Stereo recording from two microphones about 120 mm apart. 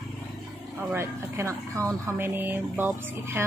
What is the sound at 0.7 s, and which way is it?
A woman's voice, 20° right (ahead or behind).